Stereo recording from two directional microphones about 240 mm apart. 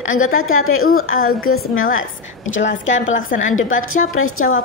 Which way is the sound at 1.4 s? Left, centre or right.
Left.